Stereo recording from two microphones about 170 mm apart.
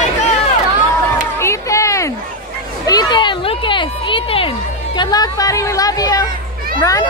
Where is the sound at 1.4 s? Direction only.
15° left (ahead or behind).